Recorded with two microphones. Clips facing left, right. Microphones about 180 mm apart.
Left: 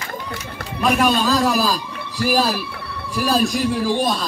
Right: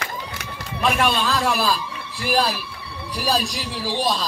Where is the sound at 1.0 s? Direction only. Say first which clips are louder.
Left 4 dB; 40° left (ahead or behind).